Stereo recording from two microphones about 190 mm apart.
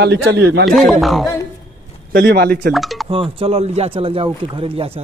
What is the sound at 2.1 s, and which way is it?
Speech, 55° right (ahead or behind).